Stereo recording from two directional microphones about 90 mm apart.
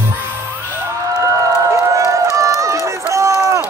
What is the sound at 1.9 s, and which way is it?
Run, 35° right (ahead or behind).